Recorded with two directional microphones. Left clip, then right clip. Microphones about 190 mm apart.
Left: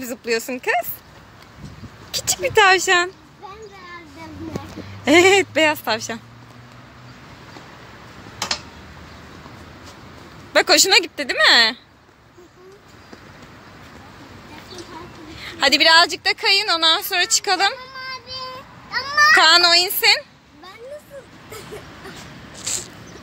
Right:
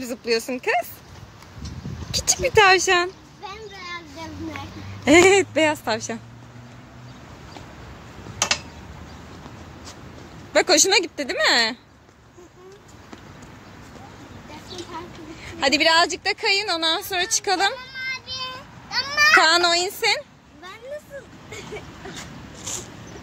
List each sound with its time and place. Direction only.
0.0 s speech: centre (ahead or behind)
2.0 s speech: 5° right (ahead or behind)
5.0 s speech: 5° right (ahead or behind)
10.5 s a woman's voice: 10° right (ahead or behind)
15.3 s a woman's voice: 5° right (ahead or behind)
19.0 s a child's voice: 15° right (ahead or behind)
22.7 s a sound: 15° right (ahead or behind)